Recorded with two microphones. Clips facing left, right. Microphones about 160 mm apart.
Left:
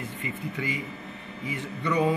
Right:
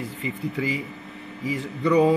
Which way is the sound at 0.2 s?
30° right (ahead or behind).